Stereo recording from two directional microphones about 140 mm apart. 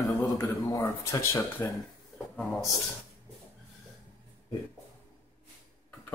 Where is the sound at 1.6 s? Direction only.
15° left (ahead or behind).